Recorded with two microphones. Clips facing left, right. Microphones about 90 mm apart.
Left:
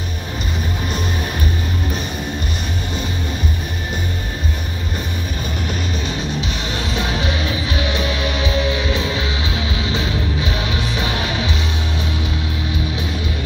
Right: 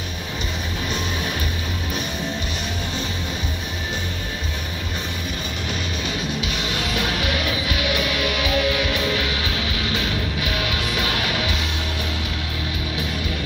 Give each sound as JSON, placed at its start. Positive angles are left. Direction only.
{"t": 6.4, "sound": "music", "side_deg": 30}